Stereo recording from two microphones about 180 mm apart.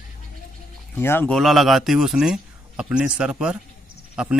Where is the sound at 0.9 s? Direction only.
10° left (ahead or behind).